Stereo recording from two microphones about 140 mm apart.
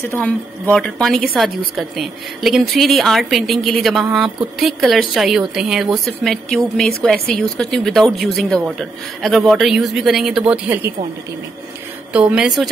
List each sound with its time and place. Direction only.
0.2 s a woman's voice: 10° left (ahead or behind); by 10.9 s 10° right (ahead or behind)
12.1 s a woman's voice: 10° right (ahead or behind)